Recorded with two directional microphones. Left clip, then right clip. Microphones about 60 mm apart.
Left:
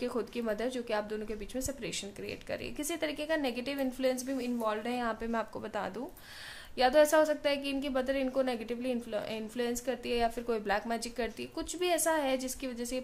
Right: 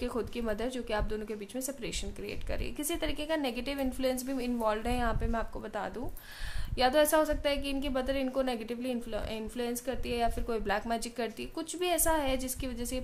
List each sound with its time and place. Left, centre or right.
0.0 s a woman's voice: centre
4.1 s a woman's voice: right
4.6 s speech: right
6.8 s speech: right
7.1 s a woman's voice: centre
10.0 s a woman's voice: centre
10.9 s speech: right
11.5 s a woman's voice: centre